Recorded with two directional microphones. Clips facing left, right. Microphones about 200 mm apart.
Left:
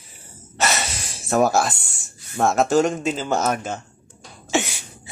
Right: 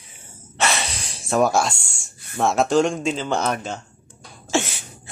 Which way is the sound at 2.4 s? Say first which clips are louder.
Even; centre (ahead or behind).